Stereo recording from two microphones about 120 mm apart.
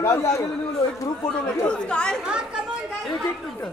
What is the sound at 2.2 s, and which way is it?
Speech, 5° right (ahead or behind).